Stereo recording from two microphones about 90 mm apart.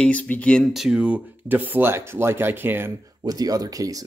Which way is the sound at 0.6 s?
5° right (ahead or behind).